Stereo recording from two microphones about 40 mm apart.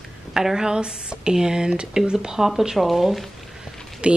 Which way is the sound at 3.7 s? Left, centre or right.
Centre.